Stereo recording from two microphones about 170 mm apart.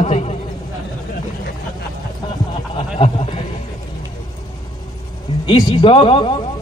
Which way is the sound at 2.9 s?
30° left (ahead or behind).